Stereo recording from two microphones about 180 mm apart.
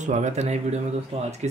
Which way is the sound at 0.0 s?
40° right (ahead or behind).